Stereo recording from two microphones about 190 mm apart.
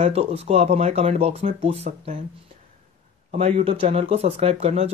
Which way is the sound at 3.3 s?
30° right (ahead or behind).